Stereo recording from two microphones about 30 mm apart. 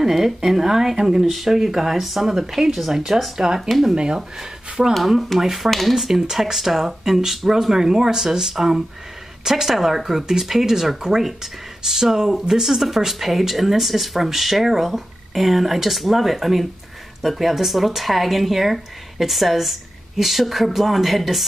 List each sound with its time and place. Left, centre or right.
0.0 s speech: centre; by 4.2 s right
4.4 s speech: centre